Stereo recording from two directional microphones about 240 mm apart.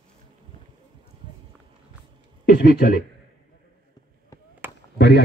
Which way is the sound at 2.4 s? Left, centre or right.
Left.